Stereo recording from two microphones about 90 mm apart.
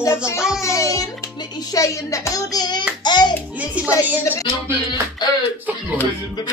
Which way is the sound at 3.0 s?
55° left (ahead or behind).